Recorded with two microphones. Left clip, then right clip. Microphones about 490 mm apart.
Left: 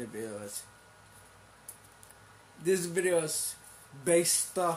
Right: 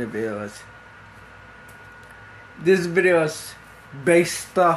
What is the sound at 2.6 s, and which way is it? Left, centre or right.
Speech, left.